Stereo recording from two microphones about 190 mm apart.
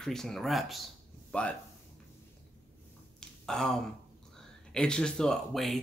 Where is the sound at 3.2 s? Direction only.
5° left (ahead or behind).